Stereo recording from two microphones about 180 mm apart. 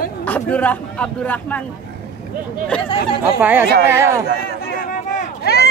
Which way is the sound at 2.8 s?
30° left (ahead or behind).